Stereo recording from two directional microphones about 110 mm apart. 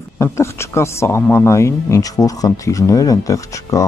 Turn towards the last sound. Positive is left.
turn(degrees=30)  # may be behind; listen again after turning